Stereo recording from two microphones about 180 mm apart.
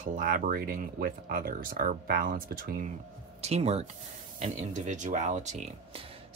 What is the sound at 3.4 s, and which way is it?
Speech, 35° right (ahead or behind).